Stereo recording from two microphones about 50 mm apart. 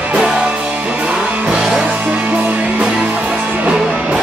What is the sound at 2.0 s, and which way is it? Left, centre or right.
Music, right.